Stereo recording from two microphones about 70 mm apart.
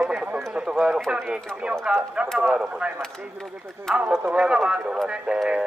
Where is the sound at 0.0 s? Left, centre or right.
Right.